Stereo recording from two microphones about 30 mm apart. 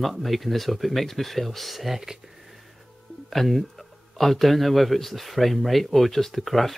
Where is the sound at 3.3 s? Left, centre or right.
Centre.